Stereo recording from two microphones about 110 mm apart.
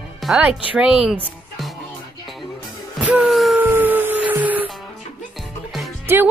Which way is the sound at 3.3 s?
Centre (ahead or behind).